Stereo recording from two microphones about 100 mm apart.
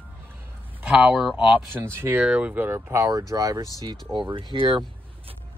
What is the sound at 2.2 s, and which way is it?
Speech, 10° right (ahead or behind).